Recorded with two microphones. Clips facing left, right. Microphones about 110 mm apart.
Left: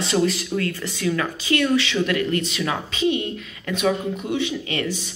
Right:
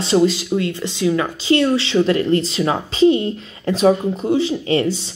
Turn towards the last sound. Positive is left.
turn(degrees=-30)  # may be behind; listen again after turning